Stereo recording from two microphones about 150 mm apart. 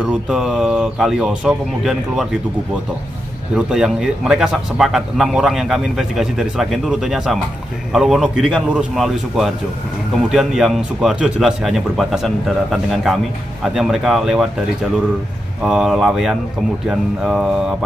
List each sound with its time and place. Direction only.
0.0 s speech: 5° right (ahead or behind)
3.5 s speech: 5° right (ahead or behind)
15.6 s speech: 5° right (ahead or behind)